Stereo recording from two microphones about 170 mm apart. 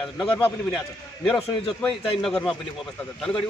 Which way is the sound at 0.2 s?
5° left (ahead or behind).